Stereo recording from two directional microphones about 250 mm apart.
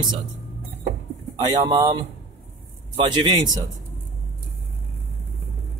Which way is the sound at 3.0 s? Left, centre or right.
Centre.